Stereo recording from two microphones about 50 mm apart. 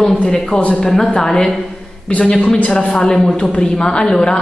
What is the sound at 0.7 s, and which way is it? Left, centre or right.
Speech, centre.